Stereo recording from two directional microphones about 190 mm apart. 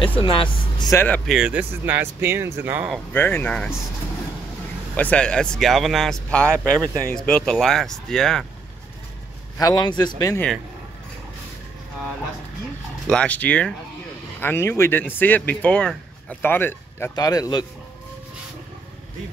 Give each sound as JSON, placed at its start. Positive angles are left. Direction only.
{"t": 0.2, "sound": "speech", "side_deg": 25}
{"t": 1.0, "sound": "speech", "side_deg": 5}
{"t": 3.1, "sound": "speech", "side_deg": 10}
{"t": 4.9, "sound": "speech", "side_deg": 5}
{"t": 9.6, "sound": "speech", "side_deg": 20}
{"t": 13.0, "sound": "speech", "side_deg": 5}